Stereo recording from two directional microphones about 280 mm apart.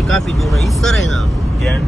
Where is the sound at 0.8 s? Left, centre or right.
Centre.